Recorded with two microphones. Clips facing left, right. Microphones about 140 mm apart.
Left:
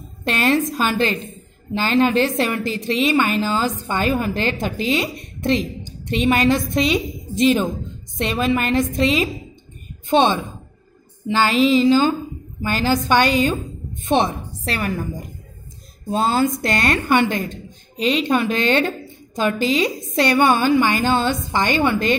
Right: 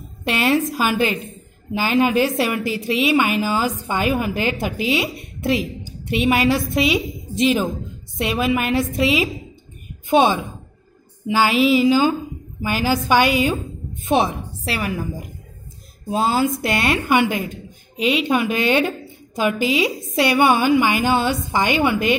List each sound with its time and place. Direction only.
0.2 s a woman's voice: 10° right (ahead or behind)